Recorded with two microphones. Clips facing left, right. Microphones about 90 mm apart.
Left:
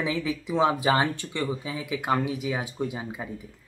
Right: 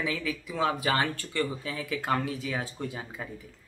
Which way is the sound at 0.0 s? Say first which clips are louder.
Left 4 dB; 20° left (ahead or behind).